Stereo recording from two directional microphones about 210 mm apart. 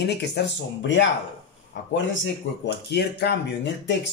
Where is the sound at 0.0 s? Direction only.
55° left (ahead or behind).